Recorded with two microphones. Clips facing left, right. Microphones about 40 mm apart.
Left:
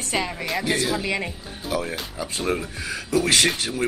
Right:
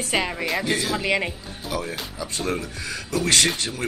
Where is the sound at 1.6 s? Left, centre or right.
Centre.